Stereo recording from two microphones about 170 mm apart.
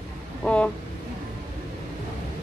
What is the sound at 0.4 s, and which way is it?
Vehicle, 5° left (ahead or behind).